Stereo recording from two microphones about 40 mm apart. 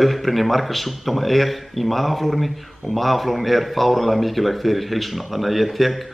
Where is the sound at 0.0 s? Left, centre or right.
Centre.